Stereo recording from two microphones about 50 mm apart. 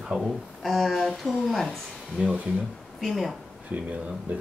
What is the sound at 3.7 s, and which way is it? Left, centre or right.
Speech, right.